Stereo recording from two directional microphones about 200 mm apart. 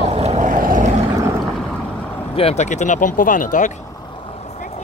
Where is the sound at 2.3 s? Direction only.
30° left (ahead or behind).